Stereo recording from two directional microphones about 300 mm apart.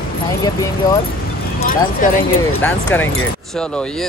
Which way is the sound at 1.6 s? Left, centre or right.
Left.